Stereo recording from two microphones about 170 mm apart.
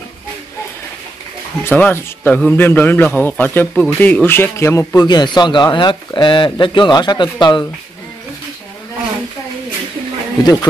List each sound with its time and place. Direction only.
1.6 s a man's voice: 10° left (ahead or behind)
10.4 s a man's voice: 25° left (ahead or behind)